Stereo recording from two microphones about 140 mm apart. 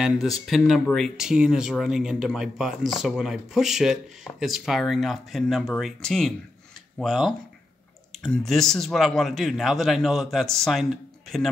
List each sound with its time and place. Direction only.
0.0 s speech: centre (ahead or behind)